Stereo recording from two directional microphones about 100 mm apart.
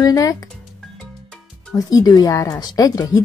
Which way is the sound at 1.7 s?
35° left (ahead or behind).